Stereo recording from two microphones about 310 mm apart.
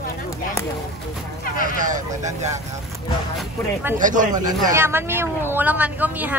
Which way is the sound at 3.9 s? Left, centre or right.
Right.